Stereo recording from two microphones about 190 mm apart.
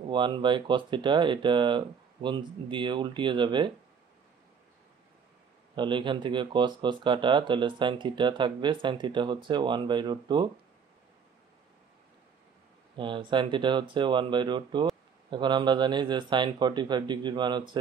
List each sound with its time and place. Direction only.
0.1 s speech: 25° right (ahead or behind)
5.8 s speech: 25° right (ahead or behind)
12.9 s speech: 25° right (ahead or behind)